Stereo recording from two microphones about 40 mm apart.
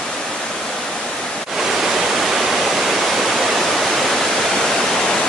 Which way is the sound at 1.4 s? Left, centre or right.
Centre.